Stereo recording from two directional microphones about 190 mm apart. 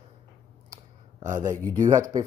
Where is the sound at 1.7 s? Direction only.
15° right (ahead or behind).